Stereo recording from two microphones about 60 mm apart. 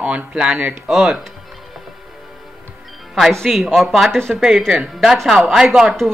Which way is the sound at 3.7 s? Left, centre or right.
Centre.